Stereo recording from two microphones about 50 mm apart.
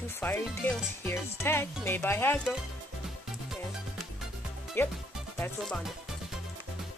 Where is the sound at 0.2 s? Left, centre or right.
Left.